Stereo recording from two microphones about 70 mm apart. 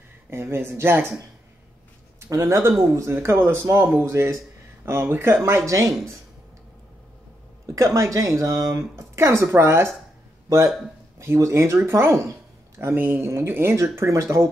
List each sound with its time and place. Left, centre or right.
0.3 s speech: right
2.1 s speech: right
5.7 s speech: right
7.6 s speech: right
11.3 s speech: right
12.9 s speech: right
13.2 s speech: right